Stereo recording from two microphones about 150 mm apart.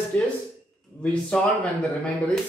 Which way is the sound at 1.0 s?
5° left (ahead or behind).